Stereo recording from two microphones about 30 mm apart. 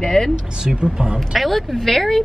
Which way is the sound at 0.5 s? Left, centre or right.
Right.